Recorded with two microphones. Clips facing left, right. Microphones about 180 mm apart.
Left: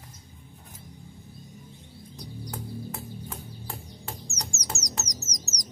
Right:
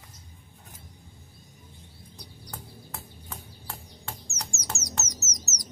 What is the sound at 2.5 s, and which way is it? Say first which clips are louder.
Music: left 7 dB; centre (ahead or behind).